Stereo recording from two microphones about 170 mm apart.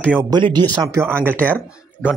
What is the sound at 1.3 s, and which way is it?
Speech, 10° left (ahead or behind).